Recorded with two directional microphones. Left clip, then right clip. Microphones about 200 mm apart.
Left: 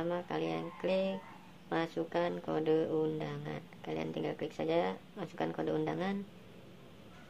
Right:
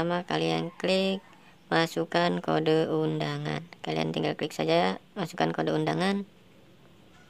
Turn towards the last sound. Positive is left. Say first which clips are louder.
# right 7 dB
turn(degrees=-45)  # may be behind; listen again after turning